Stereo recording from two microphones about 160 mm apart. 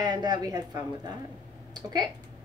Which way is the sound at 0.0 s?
25° right (ahead or behind).